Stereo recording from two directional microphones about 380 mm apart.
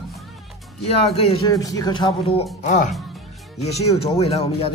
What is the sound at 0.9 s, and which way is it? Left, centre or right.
A man's voice, centre.